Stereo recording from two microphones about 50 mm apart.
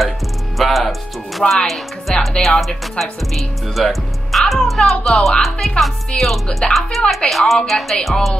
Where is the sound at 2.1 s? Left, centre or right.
Centre.